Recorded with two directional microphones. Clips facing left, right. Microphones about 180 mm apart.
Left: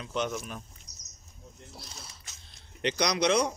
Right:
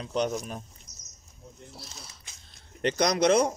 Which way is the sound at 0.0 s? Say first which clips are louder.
Right 4 dB; 35° right (ahead or behind).